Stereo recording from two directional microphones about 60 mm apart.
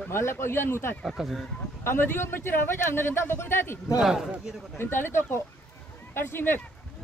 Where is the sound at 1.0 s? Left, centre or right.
Centre.